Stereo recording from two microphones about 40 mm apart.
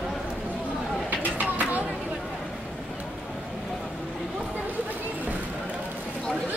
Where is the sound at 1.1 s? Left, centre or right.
Right.